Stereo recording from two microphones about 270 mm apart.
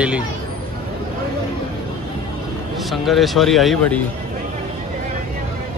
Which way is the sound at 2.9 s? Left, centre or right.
Centre.